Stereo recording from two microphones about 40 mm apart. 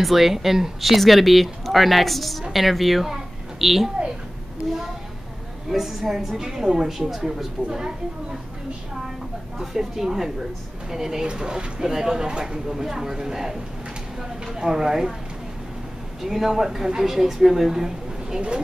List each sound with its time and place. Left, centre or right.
0.0 s speech: centre
5.7 s a woman's voice: centre
6.9 s a woman's voice: centre
9.6 s a woman's voice: centre
16.2 s a woman's voice: centre